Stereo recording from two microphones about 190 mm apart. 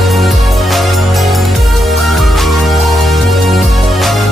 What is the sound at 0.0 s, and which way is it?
Music, centre (ahead or behind).